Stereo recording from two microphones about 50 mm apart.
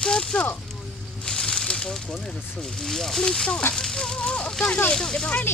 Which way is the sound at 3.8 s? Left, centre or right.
Centre.